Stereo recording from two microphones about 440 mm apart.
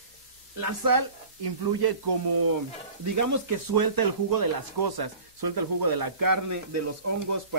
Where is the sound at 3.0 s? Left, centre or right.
Right.